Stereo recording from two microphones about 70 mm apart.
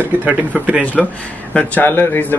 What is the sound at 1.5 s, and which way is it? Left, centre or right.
Speech, centre.